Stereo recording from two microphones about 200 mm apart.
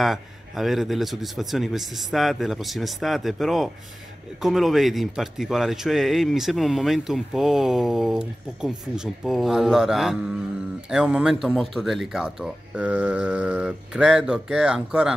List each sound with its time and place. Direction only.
0.0 s speech: centre (ahead or behind)